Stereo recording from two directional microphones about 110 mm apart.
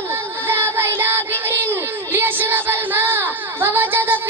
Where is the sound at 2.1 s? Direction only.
20° right (ahead or behind).